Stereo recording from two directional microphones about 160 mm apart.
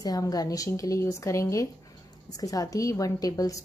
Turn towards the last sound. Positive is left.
turn(degrees=20)  # may be behind; listen again after turning